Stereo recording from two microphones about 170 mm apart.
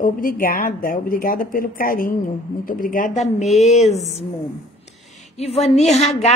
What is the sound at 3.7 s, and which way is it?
Music, 40° left (ahead or behind).